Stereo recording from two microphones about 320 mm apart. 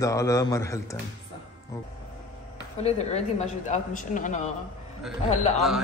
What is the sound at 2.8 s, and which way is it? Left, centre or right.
Speech, centre.